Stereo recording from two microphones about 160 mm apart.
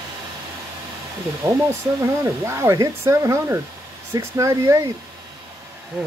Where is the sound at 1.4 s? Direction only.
20° right (ahead or behind).